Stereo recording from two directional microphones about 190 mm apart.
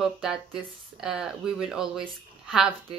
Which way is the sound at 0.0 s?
5° right (ahead or behind).